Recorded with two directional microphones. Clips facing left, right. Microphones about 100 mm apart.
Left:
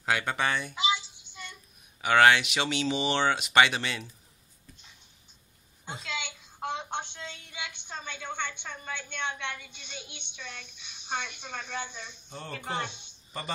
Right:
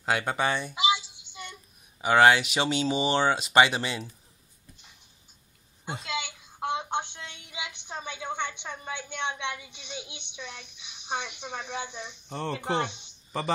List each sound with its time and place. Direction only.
0.1 s a woman's voice: 15° right (ahead or behind)
0.4 s a sound: 25° right (ahead or behind)
2.0 s speech: 25° right (ahead or behind)
3.5 s speech: 20° right (ahead or behind)
6.0 s a sound: 10° right (ahead or behind)
7.2 s a woman's voice: 15° right (ahead or behind)
12.3 s speech: 70° right (ahead or behind)
12.5 s speech: 20° right (ahead or behind)